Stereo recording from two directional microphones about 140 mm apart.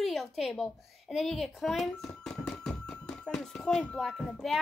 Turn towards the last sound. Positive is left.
turn(degrees=0)  # may be behind; listen again after turning